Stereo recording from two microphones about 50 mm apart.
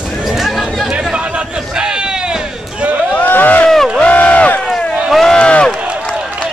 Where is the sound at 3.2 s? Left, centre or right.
Left.